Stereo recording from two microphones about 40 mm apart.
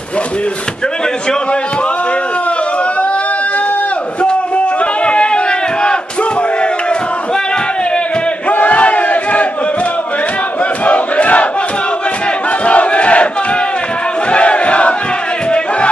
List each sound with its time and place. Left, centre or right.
4.2 s a sound: left
8.5 s battle cry: left
10.9 s crowd: left
12.6 s battle cry: left
14.3 s battle cry: left